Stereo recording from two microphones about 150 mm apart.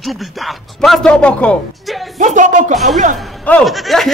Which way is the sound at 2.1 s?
55° right (ahead or behind).